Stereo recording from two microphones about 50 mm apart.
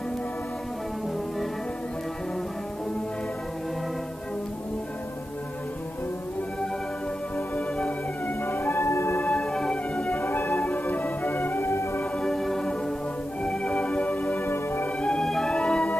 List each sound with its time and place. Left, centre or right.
7.3 s music: left
8.5 s music: left
9.2 s music: left
10.2 s music: left
11.6 s music: left
12.2 s music: centre
13.4 s music: left
14.4 s music: left
15.0 s music: centre
15.2 s music: centre
15.5 s music: centre